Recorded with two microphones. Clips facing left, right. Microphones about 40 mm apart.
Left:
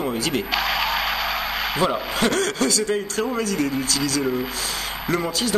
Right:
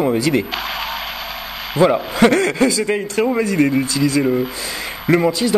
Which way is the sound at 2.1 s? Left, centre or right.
Right.